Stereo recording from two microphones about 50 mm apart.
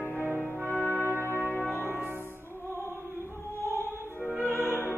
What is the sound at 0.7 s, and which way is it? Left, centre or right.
Brass instrument, right.